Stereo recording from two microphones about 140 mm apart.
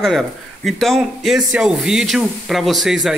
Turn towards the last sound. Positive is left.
turn(degrees=0)  # may be behind; listen again after turning